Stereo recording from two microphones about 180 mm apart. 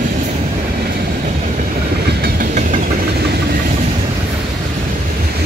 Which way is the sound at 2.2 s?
45° right (ahead or behind).